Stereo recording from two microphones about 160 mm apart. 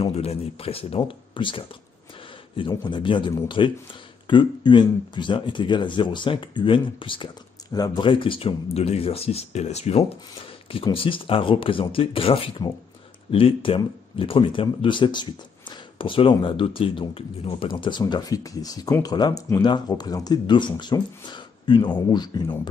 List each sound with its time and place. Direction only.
0.0 s speech: 40° left (ahead or behind)
2.8 s speech: 30° left (ahead or behind)